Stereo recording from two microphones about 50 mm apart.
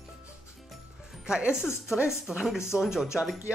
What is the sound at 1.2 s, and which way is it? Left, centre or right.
Speech, centre.